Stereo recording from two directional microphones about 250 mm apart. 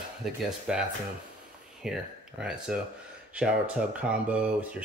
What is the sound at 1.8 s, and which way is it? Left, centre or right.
Speech, centre.